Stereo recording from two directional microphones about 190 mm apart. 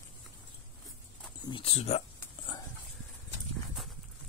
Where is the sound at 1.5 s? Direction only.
30° left (ahead or behind).